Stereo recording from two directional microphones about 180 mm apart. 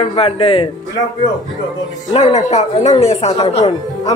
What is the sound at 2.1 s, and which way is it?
Speech, 40° left (ahead or behind).